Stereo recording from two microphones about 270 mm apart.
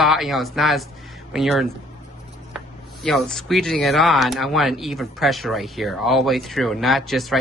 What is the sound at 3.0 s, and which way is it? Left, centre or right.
Speech, centre.